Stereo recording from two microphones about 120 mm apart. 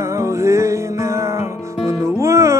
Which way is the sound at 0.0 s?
25° right (ahead or behind).